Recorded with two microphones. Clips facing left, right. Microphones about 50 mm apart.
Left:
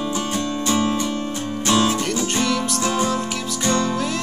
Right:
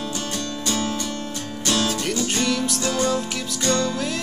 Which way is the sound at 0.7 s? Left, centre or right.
Centre.